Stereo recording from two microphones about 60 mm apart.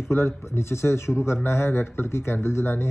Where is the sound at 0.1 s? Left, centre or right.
Left.